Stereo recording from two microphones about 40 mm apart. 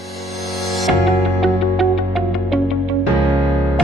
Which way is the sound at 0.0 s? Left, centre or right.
Centre.